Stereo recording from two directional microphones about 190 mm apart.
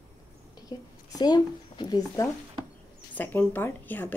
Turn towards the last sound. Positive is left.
turn(degrees=10)  # may be behind; listen again after turning